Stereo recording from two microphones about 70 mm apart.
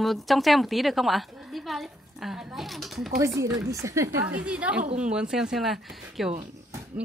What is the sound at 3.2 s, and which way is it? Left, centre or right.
Speech, right.